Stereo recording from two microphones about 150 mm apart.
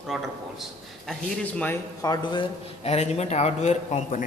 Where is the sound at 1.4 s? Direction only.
10° left (ahead or behind).